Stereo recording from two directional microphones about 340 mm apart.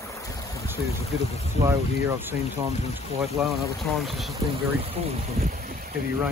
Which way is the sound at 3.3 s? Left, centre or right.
Centre.